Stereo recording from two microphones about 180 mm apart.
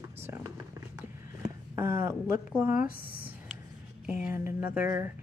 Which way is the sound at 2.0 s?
50° left (ahead or behind).